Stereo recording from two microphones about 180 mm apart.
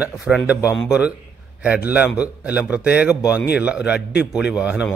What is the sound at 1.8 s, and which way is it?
A man's voice, 5° right (ahead or behind).